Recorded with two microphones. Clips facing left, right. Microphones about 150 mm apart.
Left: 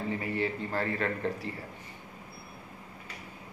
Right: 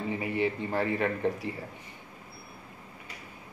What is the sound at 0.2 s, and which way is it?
A man's voice, 15° right (ahead or behind).